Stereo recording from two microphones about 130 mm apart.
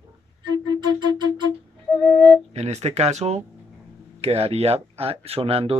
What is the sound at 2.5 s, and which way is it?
Speech, 60° right (ahead or behind).